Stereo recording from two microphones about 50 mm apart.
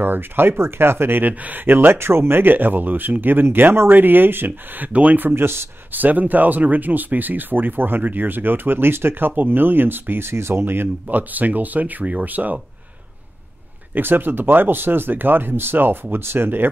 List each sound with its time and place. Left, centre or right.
0.0 s speech: right
1.2 s speech: right
4.5 s speech: right
5.3 s speech: right
5.9 s speech: right
10.6 s speech: right
13.9 s speech: right